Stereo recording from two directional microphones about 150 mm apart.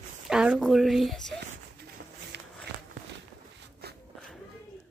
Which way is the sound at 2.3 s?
90° right.